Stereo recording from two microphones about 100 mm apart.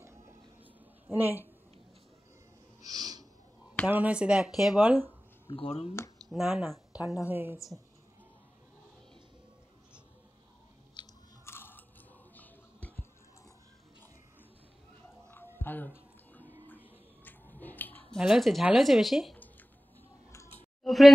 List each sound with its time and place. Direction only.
1.1 s a woman's voice: 20° right (ahead or behind)
2.8 s snort: 40° right (ahead or behind)
3.9 s speech: 15° right (ahead or behind)
4.8 s speech: 15° right (ahead or behind)
5.5 s speech: 90° left
6.3 s speech: 5° right (ahead or behind)
7.2 s a woman's voice: 20° right (ahead or behind)
7.5 s speech: centre (ahead or behind)
11.0 s biting: 50° left (ahead or behind)
11.4 s biting: 20° left (ahead or behind)
15.3 s music: 20° left (ahead or behind)
17.6 s a sound: 20° left (ahead or behind)
18.1 s speech: centre (ahead or behind)
20.8 s speech: centre (ahead or behind)